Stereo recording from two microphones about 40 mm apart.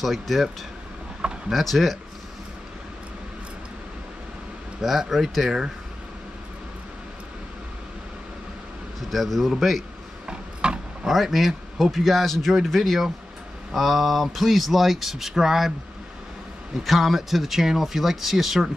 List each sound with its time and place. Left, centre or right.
0.0 s speech: centre
1.5 s speech: centre
4.8 s speech: centre
9.1 s speech: centre
10.2 s a sound: right
11.1 s speech: centre
16.7 s speech: centre